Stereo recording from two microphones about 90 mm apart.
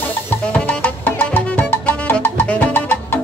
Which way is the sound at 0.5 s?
15° left (ahead or behind).